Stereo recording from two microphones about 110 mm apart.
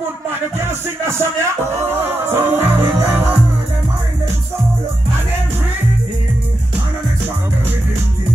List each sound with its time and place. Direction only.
0.6 s music: 25° right (ahead or behind)